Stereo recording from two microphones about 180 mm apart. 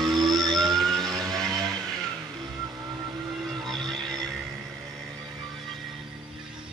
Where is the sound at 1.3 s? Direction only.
20° right (ahead or behind).